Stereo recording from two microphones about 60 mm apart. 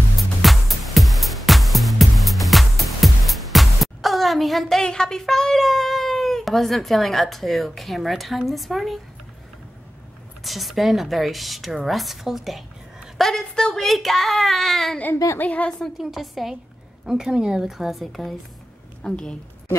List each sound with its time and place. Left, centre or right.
0.4 s music: centre
4.8 s speech: centre
10.4 s speech: centre
15.3 s a woman's voice: left
16.0 s a woman's voice: centre